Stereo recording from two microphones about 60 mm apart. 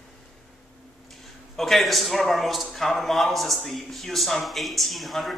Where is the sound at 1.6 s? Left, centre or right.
Centre.